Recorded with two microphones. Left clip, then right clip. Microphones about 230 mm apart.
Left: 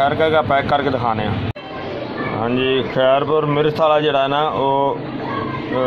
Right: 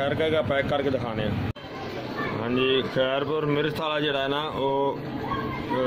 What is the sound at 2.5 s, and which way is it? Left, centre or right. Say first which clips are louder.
Speech: left 4 dB; centre.